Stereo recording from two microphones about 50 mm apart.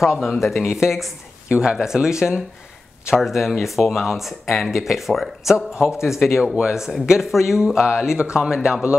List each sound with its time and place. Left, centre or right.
0.2 s speech: centre
1.5 s speech: centre